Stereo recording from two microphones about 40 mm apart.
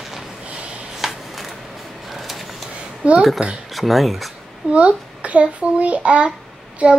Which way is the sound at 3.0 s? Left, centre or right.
Right.